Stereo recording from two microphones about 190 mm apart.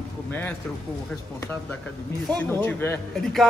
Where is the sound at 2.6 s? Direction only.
10° left (ahead or behind).